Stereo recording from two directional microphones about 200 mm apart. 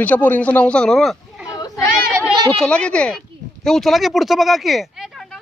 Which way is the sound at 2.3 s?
20° right (ahead or behind).